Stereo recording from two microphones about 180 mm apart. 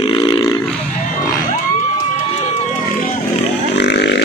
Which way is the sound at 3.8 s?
70° left (ahead or behind).